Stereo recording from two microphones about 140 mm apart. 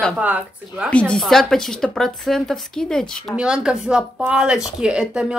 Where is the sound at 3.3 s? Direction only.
5° right (ahead or behind).